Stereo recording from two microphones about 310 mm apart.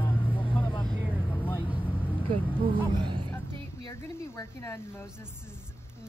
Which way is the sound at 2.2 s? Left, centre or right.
Centre.